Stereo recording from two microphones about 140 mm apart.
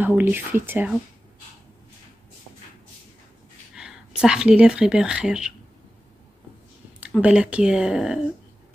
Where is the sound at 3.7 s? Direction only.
5° right (ahead or behind).